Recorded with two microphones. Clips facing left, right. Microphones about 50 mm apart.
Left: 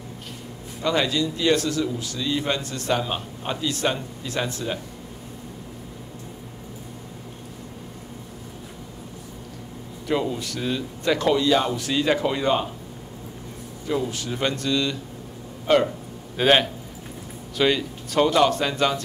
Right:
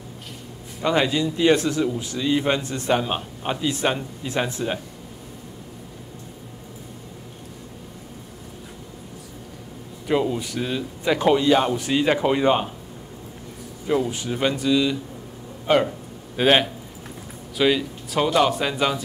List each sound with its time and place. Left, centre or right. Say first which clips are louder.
0.8 s a man's voice: right 2 dB; right
10.0 s speech: right 3 dB; centre
13.8 s speech: right 3 dB; centre